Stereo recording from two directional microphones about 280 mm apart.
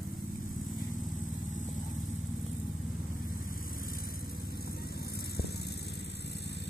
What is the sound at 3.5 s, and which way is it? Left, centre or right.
Vehicle, left.